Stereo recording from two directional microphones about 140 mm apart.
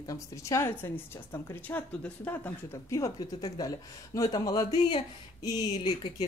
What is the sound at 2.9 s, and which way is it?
A woman's voice, 25° left (ahead or behind).